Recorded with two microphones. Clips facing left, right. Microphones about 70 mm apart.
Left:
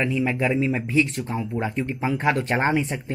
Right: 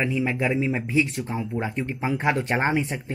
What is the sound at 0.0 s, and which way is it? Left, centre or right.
Speech, centre.